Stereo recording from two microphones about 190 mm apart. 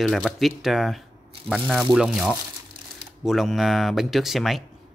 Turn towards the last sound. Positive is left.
turn(degrees=0)  # may be behind; listen again after turning